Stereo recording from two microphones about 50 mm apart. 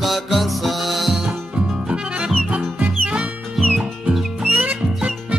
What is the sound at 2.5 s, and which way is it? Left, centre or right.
Music, right.